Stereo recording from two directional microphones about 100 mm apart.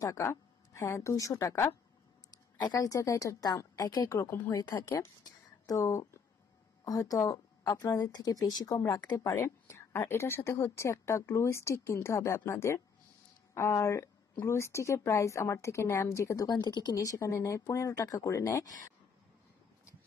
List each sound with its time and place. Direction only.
0.0 s a woman's voice: 30° left (ahead or behind)
4.6 s a woman's voice: 40° left (ahead or behind)
5.2 s a sound: 35° left (ahead or behind)
6.8 s a woman's voice: 35° left (ahead or behind)
16.6 s speech: 45° left (ahead or behind)
17.0 s a woman's voice: 30° left (ahead or behind)